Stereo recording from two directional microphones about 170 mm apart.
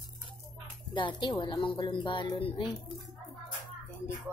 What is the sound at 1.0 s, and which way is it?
A woman's voice, 25° left (ahead or behind).